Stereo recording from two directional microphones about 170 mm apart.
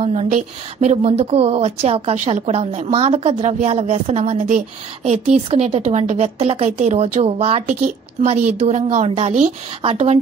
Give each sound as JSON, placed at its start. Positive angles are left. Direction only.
{"t": 0.0, "sound": "a woman's voice", "side_deg": -40}